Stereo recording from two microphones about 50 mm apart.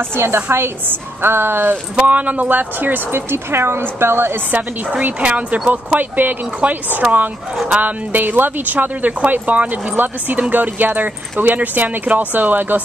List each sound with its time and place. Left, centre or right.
0.1 s a woman's voice: right
2.0 s speech: right
5.0 s speech: right